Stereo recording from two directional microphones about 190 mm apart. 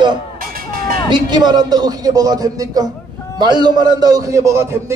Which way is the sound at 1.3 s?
20° right (ahead or behind).